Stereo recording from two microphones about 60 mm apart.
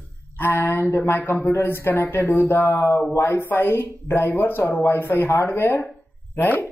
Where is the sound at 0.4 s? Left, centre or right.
Left.